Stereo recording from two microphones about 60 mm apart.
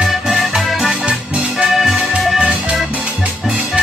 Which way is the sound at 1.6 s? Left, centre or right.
Centre.